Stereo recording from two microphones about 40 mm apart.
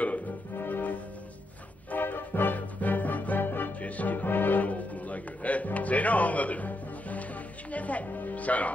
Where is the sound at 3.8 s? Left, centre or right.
Left.